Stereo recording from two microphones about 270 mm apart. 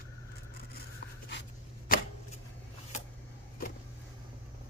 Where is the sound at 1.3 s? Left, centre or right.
Left.